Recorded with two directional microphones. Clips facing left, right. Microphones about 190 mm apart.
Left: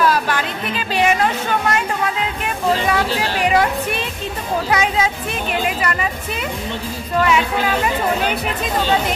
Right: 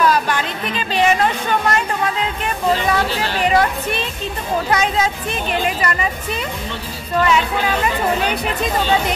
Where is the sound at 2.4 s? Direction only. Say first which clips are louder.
Even; 10° left (ahead or behind).